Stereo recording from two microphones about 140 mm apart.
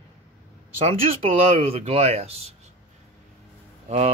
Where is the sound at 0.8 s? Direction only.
45° right (ahead or behind).